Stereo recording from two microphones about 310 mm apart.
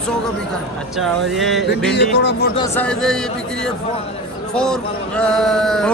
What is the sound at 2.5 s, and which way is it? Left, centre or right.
A man's voice, centre.